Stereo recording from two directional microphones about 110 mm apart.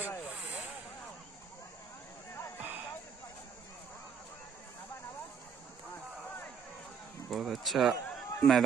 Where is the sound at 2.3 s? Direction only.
25° left (ahead or behind).